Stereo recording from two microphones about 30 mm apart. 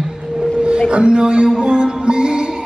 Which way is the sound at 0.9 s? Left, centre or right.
Right.